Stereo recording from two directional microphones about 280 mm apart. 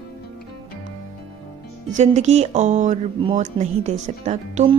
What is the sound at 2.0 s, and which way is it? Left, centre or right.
A woman's voice, right.